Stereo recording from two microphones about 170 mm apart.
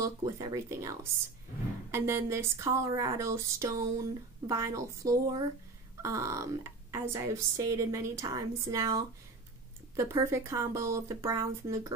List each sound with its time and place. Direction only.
0.0 s speech: 20° right (ahead or behind)